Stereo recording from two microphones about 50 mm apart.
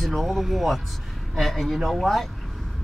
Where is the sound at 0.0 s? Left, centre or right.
Centre.